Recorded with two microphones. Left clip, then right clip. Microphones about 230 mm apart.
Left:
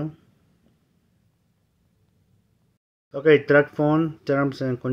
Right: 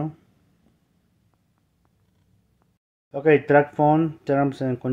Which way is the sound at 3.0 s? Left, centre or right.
Centre.